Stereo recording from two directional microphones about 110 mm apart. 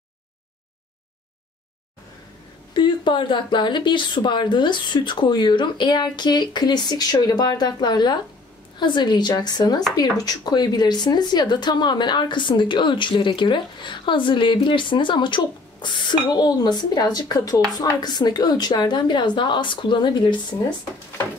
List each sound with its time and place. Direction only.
2.7 s a woman's voice: 45° left (ahead or behind)